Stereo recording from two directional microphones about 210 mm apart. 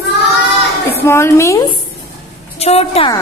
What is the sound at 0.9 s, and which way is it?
Speech, 10° left (ahead or behind).